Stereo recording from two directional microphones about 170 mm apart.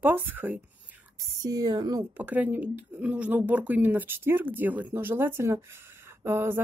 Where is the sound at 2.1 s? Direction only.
10° right (ahead or behind).